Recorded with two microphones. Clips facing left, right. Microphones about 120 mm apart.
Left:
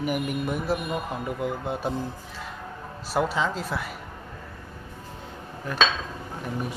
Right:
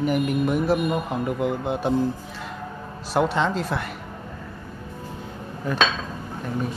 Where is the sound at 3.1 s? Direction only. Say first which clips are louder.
Right 4 dB; 5° left (ahead or behind).